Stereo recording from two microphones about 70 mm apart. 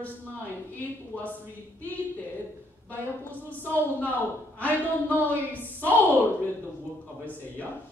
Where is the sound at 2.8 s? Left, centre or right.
Left.